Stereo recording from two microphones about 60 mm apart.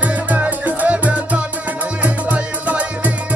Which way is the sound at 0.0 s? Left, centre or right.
Right.